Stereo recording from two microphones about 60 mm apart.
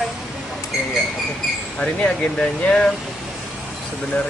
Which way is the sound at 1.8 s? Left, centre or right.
Centre.